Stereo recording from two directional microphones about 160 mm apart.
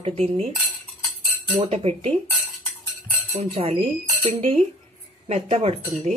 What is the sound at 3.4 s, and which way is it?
Speech, 40° right (ahead or behind).